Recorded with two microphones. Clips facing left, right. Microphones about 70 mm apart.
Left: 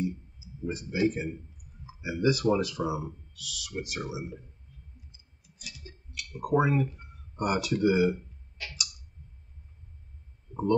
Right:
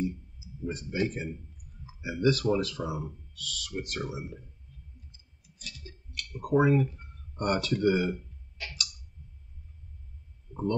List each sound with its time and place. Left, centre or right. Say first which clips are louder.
0.7 s speech: left 3 dB; centre
5.1 s a sound: even; centre
6.1 s speech: even; centre
10.5 s heart sounds: left 2 dB; left